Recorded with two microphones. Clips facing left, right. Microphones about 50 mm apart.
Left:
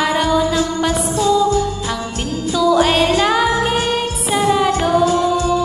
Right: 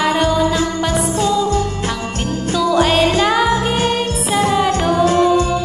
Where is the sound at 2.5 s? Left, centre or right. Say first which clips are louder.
Left 1 dB; centre.